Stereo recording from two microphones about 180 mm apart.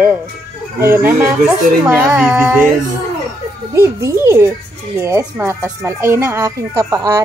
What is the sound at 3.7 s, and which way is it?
A woman's voice, 15° right (ahead or behind).